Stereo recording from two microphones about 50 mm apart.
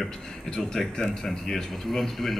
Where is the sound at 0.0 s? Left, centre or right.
Centre.